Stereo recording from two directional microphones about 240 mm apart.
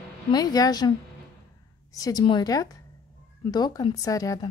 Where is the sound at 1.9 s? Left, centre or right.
Centre.